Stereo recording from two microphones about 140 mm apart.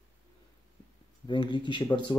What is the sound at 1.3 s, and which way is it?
Speech, 35° left (ahead or behind).